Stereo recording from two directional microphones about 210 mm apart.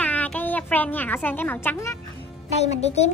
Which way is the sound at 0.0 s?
5° left (ahead or behind).